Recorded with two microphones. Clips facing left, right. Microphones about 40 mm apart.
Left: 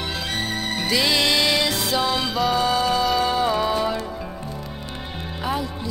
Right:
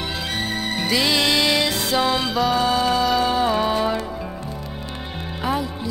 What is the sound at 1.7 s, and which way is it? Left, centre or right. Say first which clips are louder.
Music: right 2 dB; centre.